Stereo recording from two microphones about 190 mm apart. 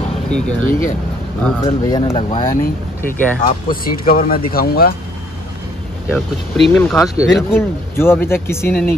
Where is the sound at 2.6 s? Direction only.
10° left (ahead or behind).